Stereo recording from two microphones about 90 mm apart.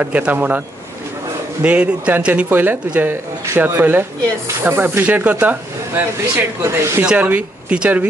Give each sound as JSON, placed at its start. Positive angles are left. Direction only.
{"t": 0.0, "sound": "speech", "side_deg": -15}
{"t": 1.6, "sound": "speech", "side_deg": -15}
{"t": 7.1, "sound": "speech", "side_deg": -15}